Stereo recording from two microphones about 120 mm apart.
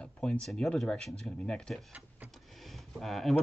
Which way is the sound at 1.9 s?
10° right (ahead or behind).